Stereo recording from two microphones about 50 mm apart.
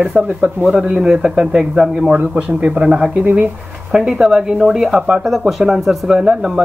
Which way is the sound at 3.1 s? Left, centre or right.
Right.